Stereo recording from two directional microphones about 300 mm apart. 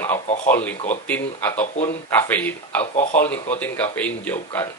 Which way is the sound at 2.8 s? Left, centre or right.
Left.